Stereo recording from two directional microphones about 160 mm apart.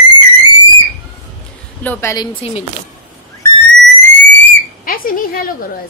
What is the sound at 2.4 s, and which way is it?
Speech, 40° left (ahead or behind).